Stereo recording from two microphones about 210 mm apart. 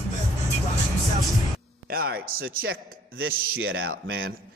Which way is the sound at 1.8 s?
45° right (ahead or behind).